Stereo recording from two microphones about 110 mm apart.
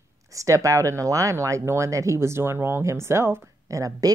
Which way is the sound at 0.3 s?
30° right (ahead or behind).